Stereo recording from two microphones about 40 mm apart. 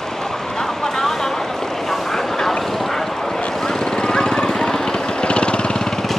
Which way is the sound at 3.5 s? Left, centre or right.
Centre.